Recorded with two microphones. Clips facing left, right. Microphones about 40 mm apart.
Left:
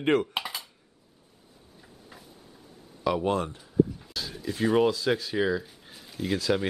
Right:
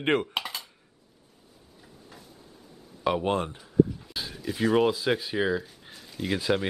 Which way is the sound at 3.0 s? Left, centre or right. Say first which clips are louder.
Even; right.